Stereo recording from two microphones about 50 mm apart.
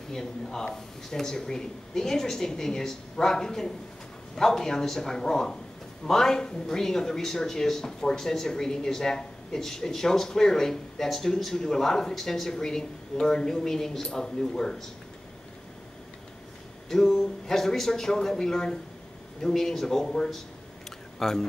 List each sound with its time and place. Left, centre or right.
0.1 s speech: centre
16.9 s speech: centre